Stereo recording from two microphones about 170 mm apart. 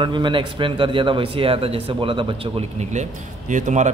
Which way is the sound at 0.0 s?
30° right (ahead or behind).